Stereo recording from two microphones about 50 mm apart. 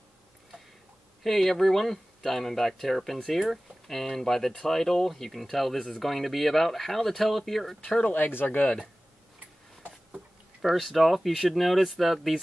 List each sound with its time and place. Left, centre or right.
1.2 s speech: centre
8.1 s speech: left
10.6 s speech: centre